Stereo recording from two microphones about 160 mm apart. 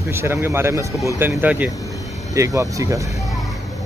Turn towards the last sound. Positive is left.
turn(degrees=-20)  # may be behind; listen again after turning